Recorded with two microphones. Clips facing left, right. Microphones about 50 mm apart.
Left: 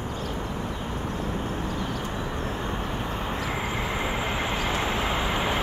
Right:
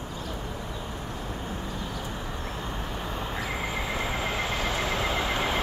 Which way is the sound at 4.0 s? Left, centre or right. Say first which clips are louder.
Left 2 dB; centre.